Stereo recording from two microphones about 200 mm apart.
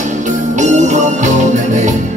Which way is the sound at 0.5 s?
35° right (ahead or behind).